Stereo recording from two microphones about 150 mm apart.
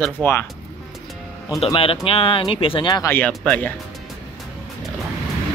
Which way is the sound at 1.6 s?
40° left (ahead or behind).